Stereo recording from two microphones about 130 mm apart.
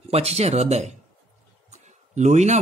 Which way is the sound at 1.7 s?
60° right (ahead or behind).